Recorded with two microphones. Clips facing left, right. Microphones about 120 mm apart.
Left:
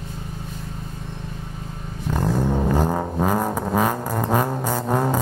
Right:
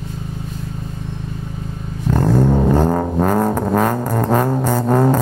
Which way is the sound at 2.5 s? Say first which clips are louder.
Right 6 dB; 15° right (ahead or behind).